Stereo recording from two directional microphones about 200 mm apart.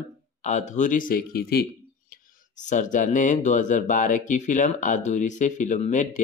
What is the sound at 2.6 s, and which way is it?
Speech, 40° left (ahead or behind).